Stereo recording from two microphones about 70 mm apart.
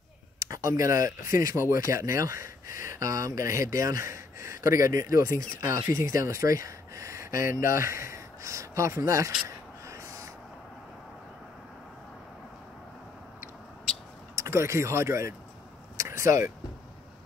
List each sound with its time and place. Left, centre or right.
0.4 s speech: right
9.8 s snort: right
14.3 s speech: right
16.0 s a sound: right